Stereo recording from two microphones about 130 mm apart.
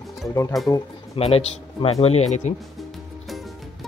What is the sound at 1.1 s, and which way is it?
Speech, 50° left (ahead or behind).